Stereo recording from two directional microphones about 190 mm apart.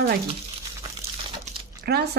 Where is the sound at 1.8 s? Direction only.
55° right (ahead or behind).